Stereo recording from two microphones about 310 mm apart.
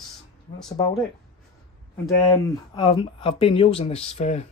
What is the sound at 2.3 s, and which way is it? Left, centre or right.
Speech, centre.